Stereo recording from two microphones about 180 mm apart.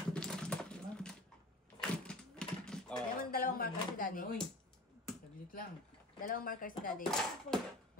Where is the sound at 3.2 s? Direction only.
50° left (ahead or behind).